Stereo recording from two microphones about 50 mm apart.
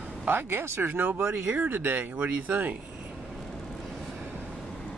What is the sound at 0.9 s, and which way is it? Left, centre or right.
Speech, right.